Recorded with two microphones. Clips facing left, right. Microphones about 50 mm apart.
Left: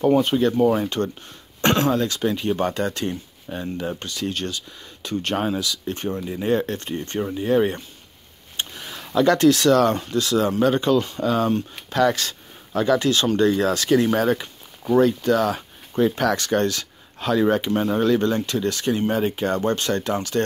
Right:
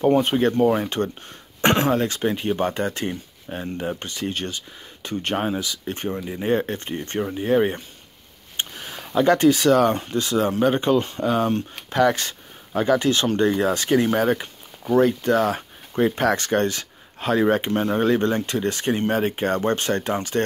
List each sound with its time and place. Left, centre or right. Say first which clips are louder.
0.2 s speech: even; right
8.5 s a sound: right 1 dB; right
9.1 s speech: even; right